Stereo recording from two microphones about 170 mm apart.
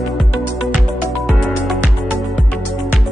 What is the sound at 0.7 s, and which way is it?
Music, centre (ahead or behind).